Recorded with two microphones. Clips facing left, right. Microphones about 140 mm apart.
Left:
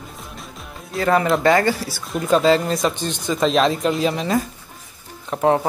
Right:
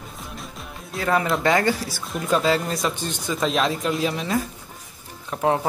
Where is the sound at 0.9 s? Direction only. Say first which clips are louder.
Left 4 dB; 5° right (ahead or behind).